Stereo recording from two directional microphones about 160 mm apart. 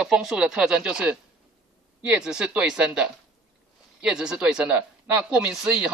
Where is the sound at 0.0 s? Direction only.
Centre (ahead or behind).